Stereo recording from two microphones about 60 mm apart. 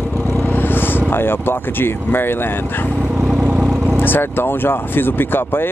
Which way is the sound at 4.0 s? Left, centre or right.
Left.